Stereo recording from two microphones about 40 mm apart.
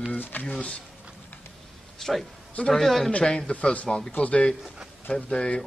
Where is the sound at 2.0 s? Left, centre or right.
Centre.